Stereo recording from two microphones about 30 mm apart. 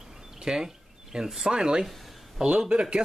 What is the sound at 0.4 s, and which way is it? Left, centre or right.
Speech, centre.